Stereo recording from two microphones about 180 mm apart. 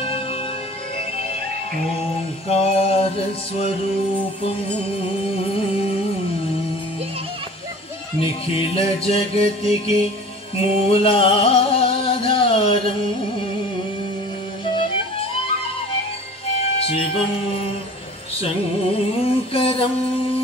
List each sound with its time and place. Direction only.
0.0 s music: 30° left (ahead or behind)
2.4 s music: 35° left (ahead or behind)
8.2 s music: 30° left (ahead or behind)
14.6 s music: 30° left (ahead or behind)
16.5 s music: 35° left (ahead or behind)